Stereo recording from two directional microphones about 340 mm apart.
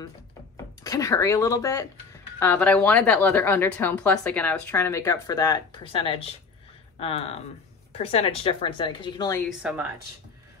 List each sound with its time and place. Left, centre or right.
0.8 s a woman's voice: centre
9.6 s a woman's voice: centre